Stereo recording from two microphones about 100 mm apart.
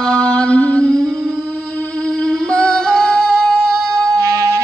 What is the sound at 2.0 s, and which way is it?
Female singing, 10° left (ahead or behind).